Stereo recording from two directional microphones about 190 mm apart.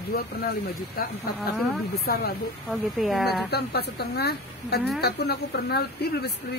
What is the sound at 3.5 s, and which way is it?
A woman's voice, 55° left (ahead or behind).